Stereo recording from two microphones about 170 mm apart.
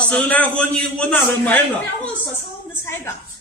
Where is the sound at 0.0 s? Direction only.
10° left (ahead or behind).